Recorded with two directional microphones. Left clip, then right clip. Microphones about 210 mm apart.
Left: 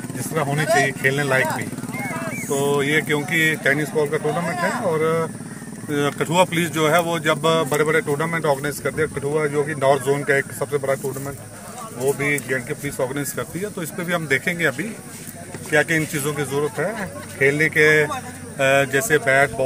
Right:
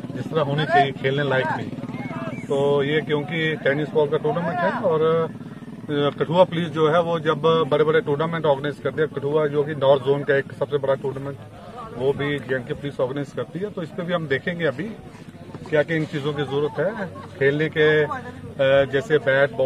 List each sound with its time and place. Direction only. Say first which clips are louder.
0.3 s speech: even; 5° left (ahead or behind)